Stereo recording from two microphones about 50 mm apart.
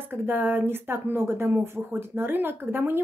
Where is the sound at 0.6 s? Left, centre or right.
Right.